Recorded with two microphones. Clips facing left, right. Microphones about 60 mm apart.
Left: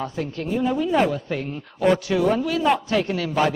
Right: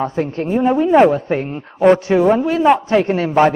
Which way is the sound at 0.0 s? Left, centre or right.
Right.